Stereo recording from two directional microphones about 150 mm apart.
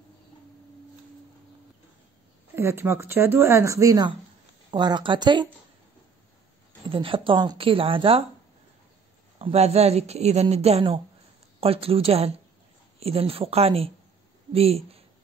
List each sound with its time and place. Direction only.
2.5 s speech: 15° right (ahead or behind); by 5.5 s 30° right (ahead or behind)
6.9 s speech: 35° right (ahead or behind)
9.4 s a woman's voice: 45° right (ahead or behind)